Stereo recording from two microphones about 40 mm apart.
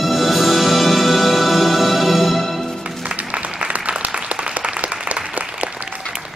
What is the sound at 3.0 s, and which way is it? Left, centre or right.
Music, right.